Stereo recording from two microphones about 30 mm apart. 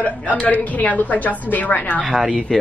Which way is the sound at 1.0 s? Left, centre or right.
Left.